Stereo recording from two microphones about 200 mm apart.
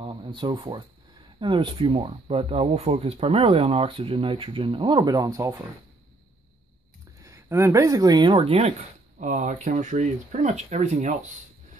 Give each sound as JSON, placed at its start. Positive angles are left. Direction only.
{"t": 0.0, "sound": "speech", "side_deg": -25}
{"t": 7.2, "sound": "speech", "side_deg": -15}